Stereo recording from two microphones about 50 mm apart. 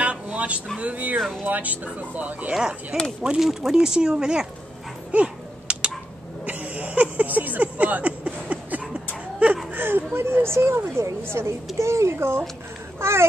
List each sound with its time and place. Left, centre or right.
0.0 s vehicle: right
0.7 s speech: right
2.5 s speech: centre
5.1 s a sound: right
9.8 s a sound: right
11.8 s speech: right